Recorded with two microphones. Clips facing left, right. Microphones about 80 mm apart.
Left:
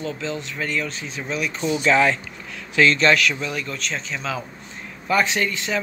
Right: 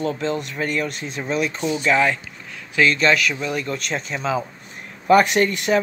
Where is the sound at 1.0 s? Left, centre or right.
Right.